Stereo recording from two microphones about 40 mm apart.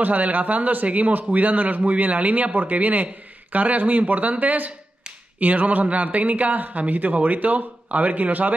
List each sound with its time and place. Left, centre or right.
0.0 s a man's voice: right